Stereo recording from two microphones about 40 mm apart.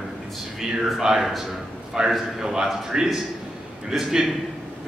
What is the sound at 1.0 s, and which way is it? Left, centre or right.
Speech, centre.